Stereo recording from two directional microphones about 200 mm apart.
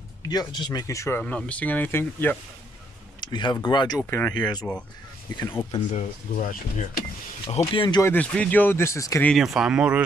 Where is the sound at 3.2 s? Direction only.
20° left (ahead or behind).